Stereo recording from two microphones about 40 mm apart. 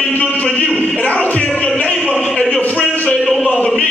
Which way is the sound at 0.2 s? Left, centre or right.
Left.